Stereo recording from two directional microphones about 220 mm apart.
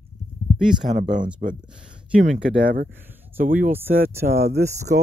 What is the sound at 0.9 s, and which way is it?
Speech, 35° right (ahead or behind).